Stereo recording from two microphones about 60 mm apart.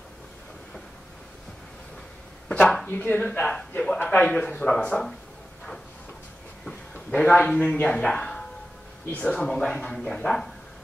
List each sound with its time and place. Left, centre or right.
2.6 s speech: centre
2.9 s speech: left
3.8 s a sound: centre
4.2 s speech: centre
6.6 s a sound: centre
7.2 s speech: centre